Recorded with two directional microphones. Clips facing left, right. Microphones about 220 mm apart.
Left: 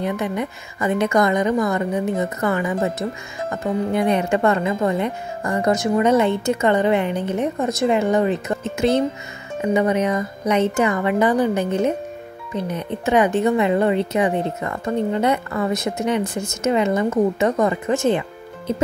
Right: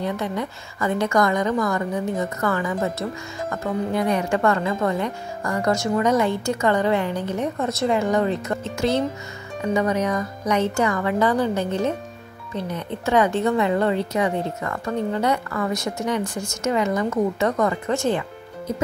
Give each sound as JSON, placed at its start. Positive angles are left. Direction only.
{"t": 0.0, "sound": "speech", "side_deg": 20}